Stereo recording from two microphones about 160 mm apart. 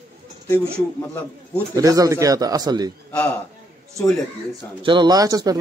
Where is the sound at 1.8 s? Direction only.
20° right (ahead or behind).